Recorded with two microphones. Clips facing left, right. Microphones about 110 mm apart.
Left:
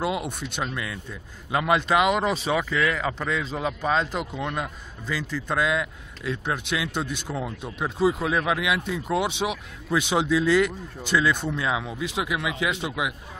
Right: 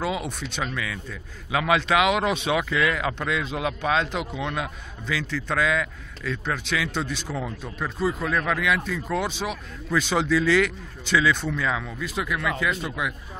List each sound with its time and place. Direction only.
0.0 s speech: 5° left (ahead or behind)